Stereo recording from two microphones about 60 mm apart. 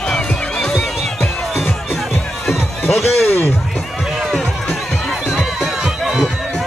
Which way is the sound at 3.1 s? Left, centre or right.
Left.